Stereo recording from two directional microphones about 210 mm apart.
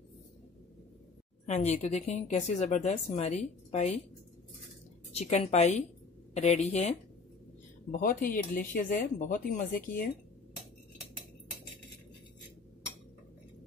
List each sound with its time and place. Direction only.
1.5 s speech: 35° left (ahead or behind)
5.1 s speech: 30° left (ahead or behind)